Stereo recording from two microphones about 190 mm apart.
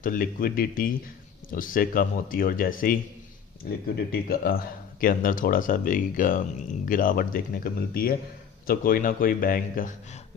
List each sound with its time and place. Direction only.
0.0 s speech: 50° left (ahead or behind)